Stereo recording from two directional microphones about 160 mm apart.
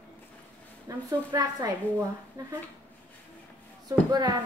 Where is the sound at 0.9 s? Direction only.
20° right (ahead or behind).